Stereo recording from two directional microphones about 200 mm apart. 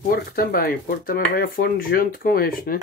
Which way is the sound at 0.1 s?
45° left (ahead or behind).